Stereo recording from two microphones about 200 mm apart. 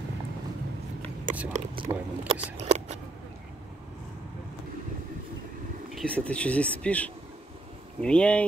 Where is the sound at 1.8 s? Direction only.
25° right (ahead or behind).